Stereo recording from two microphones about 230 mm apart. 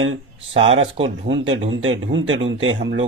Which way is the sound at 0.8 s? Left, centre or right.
Right.